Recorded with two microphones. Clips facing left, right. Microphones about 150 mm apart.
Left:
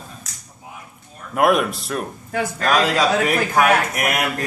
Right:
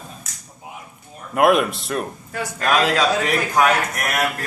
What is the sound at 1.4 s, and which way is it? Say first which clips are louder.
Speech: right 1 dB; centre (ahead or behind).